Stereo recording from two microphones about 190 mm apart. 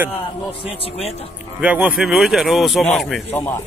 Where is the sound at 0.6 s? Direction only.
30° left (ahead or behind).